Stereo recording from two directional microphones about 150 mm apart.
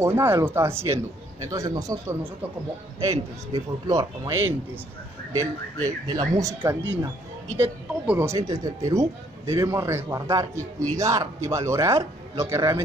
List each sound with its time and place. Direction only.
0.0 s speech: 15° right (ahead or behind)